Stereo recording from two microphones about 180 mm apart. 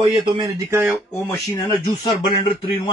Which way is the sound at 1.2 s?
15° left (ahead or behind).